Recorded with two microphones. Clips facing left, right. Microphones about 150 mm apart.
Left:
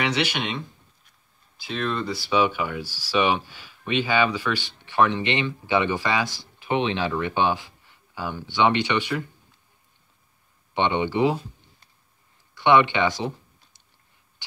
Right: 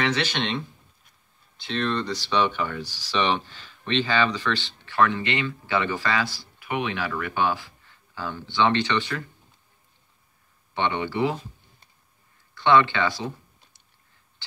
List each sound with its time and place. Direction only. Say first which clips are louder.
0.0 s speech: even; 15° left (ahead or behind)
10.7 s speech: left 3 dB; 20° left (ahead or behind)
12.5 s speech: left 1 dB; 15° left (ahead or behind)